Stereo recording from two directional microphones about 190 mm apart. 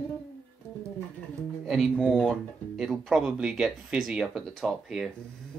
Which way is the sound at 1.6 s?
Centre (ahead or behind).